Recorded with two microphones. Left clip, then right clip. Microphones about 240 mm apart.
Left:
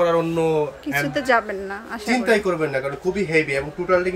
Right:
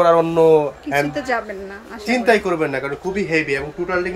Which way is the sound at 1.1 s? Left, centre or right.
Centre.